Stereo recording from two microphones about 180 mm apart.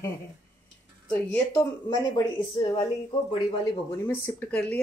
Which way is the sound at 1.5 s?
15° left (ahead or behind).